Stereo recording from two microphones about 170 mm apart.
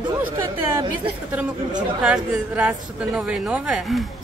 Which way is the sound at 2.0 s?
5° right (ahead or behind).